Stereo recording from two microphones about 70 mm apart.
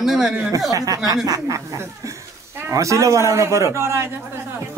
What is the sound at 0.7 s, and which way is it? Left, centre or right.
A man's voice, right.